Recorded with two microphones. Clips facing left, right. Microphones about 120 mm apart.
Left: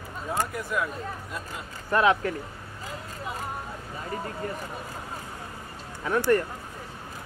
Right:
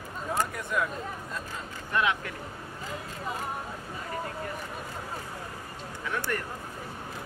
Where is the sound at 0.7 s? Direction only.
Centre (ahead or behind).